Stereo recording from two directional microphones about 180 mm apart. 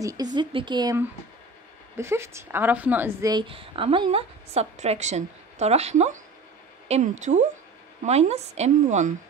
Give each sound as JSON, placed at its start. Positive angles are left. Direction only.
{"t": 0.0, "sound": "a woman's voice", "side_deg": -20}
{"t": 2.0, "sound": "a woman's voice", "side_deg": -15}